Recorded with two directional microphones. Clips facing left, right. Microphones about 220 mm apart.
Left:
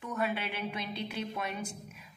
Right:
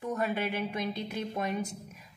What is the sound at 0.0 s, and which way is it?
A woman's voice, 40° right (ahead or behind).